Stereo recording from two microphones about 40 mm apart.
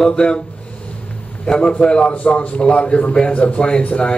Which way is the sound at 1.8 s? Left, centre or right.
Left.